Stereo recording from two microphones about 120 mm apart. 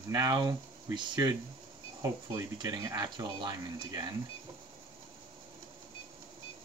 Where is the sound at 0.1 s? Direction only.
35° right (ahead or behind).